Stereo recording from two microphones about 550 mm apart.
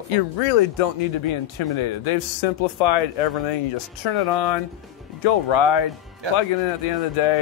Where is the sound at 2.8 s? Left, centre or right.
Left.